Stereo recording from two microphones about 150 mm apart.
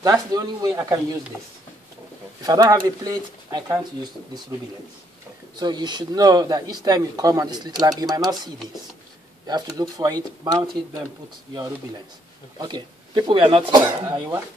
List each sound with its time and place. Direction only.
0.0 s speech: 25° right (ahead or behind)
2.4 s speech: 25° right (ahead or behind)
5.6 s speech: 30° right (ahead or behind)
9.5 s speech: 25° right (ahead or behind)
12.5 s speech: 30° right (ahead or behind)
13.8 s speech: 20° right (ahead or behind)